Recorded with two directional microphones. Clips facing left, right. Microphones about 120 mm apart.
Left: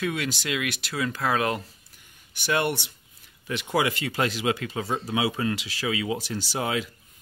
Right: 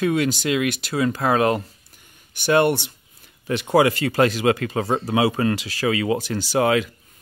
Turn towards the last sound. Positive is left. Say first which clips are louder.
# right 9 dB
turn(degrees=-75)  # may be behind; listen again after turning